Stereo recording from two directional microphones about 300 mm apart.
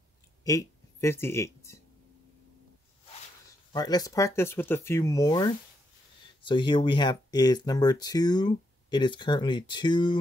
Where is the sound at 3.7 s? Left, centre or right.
Centre.